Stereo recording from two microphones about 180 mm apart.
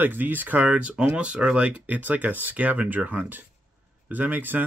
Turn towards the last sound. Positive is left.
turn(degrees=-10)  # may be behind; listen again after turning